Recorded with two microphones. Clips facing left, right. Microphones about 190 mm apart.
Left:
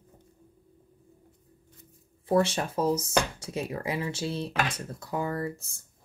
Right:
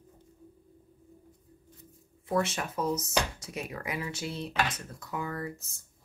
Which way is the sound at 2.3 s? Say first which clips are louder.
Left 5 dB; 30° left (ahead or behind).